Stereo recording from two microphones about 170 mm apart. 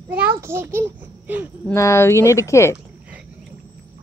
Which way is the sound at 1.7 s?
15° left (ahead or behind).